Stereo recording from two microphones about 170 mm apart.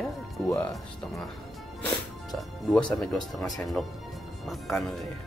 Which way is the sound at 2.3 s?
5° left (ahead or behind).